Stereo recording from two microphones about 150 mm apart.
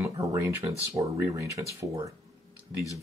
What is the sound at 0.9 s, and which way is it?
Speech, 20° right (ahead or behind).